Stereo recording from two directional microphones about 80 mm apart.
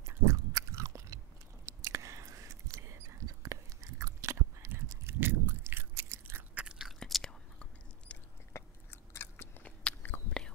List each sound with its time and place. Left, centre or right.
0.0 s biting: right
1.7 s a sound: right
6.5 s chewing: centre
6.9 s whispering: centre
8.1 s chewing: centre
8.5 s biting: left
9.6 s biting: centre